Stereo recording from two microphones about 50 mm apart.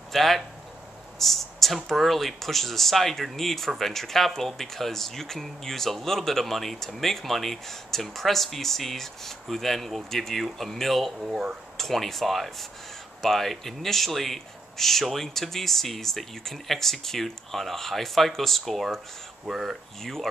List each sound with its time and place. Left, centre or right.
0.1 s speech: centre
1.1 s a sound: centre
1.9 s speech: centre
19.4 s speech: centre
20.0 s speech: centre